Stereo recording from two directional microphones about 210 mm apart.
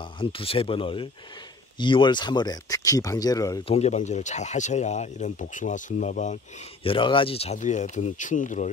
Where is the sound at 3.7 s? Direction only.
30° left (ahead or behind).